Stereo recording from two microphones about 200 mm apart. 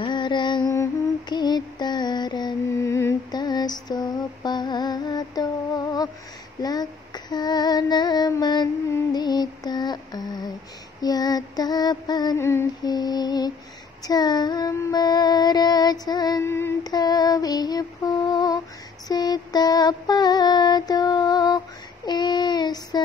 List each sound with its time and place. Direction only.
0.0 s music: 25° left (ahead or behind)
1.3 s mantra: 20° left (ahead or behind)
4.6 s music: 20° left (ahead or behind)
6.6 s female singing: 20° left (ahead or behind)
19.0 s mantra: 20° left (ahead or behind)